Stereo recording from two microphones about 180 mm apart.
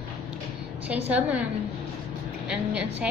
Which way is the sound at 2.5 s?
5° right (ahead or behind).